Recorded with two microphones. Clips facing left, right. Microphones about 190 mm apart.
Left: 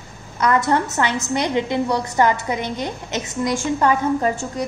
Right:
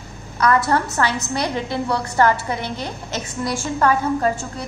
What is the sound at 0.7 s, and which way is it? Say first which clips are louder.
A woman's voice: left 1 dB; 20° left (ahead or behind).